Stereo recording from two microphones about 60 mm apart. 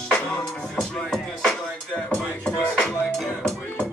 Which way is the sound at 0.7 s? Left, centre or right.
Centre.